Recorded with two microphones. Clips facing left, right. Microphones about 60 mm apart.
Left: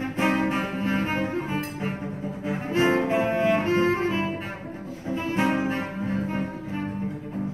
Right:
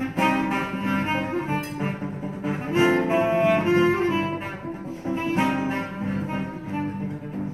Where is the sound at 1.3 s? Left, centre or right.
Right.